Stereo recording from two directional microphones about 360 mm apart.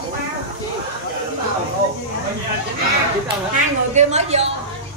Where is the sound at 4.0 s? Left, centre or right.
Centre.